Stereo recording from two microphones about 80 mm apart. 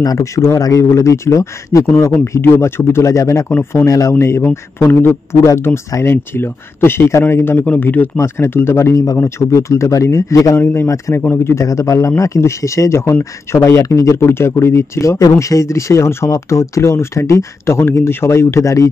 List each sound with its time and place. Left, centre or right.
0.0 s speech: left
4.1 s speech: left
7.6 s a man's voice: centre
8.2 s speech: left
8.9 s speech: left
10.6 s a man's voice: left